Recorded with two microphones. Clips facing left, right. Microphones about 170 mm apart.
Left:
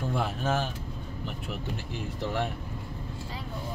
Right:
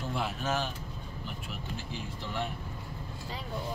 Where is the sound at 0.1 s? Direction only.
50° left (ahead or behind).